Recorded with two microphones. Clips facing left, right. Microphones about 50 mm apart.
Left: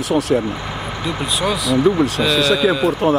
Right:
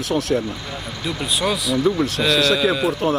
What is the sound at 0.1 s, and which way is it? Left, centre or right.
Speech, centre.